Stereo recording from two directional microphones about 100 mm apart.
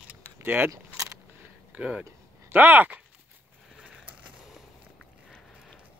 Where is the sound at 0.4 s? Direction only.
20° right (ahead or behind).